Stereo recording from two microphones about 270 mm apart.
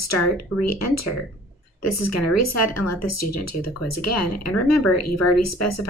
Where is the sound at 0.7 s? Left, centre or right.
Left.